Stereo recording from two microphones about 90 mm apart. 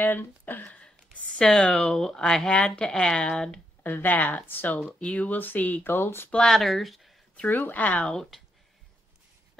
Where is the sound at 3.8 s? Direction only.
20° left (ahead or behind).